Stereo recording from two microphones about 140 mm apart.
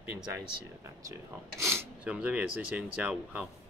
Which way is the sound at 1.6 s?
15° right (ahead or behind).